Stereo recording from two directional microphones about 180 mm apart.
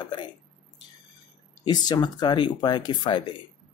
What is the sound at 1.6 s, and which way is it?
Speech, 25° left (ahead or behind).